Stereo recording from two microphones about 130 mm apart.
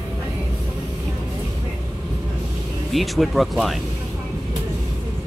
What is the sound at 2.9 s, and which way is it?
Speech, centre (ahead or behind).